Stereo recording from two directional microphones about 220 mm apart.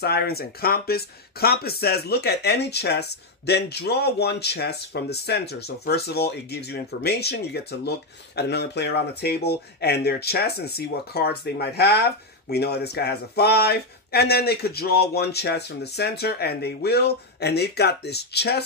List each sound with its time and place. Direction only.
0.0 s speech: 45° left (ahead or behind)